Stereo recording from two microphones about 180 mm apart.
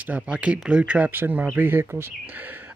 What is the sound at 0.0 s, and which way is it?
Speech, 10° right (ahead or behind).